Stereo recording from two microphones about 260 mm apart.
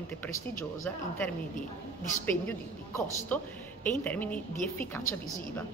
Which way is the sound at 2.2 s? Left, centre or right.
Centre.